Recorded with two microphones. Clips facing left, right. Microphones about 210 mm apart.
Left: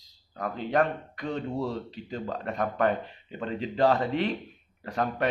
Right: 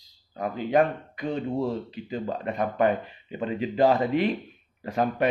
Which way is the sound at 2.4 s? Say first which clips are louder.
Right 2 dB; 5° right (ahead or behind).